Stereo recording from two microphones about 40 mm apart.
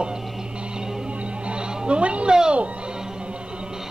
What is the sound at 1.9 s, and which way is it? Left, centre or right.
Speech, right.